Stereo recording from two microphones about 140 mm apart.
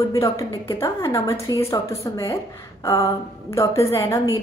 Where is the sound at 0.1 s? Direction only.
25° left (ahead or behind).